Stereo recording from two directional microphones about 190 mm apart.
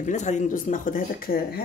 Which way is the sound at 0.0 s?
40° left (ahead or behind).